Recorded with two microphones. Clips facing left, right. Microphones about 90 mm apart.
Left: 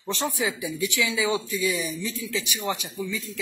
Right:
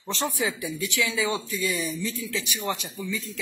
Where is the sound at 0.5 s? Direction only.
15° left (ahead or behind).